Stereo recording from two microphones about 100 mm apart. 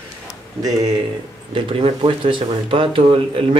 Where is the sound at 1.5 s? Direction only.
60° right (ahead or behind).